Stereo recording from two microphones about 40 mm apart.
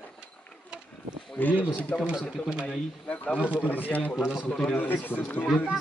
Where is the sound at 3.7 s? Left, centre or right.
Left.